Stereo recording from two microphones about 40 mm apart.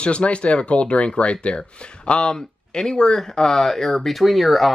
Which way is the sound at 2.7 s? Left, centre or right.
Centre.